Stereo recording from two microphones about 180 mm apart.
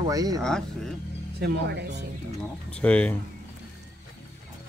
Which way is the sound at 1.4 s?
70° right (ahead or behind).